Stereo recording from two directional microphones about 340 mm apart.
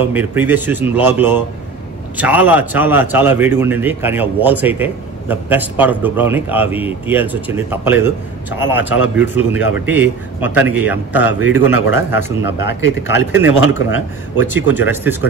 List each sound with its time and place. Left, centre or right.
0.0 s a man's voice: centre